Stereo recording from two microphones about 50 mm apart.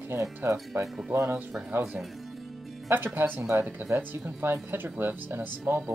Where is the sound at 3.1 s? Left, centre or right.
Right.